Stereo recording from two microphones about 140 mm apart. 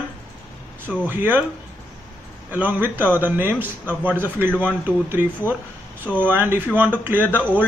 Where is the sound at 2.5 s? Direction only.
10° right (ahead or behind).